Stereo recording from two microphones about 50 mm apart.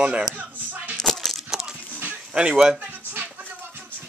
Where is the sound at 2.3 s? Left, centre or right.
Right.